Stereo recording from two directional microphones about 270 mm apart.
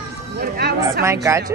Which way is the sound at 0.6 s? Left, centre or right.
Right.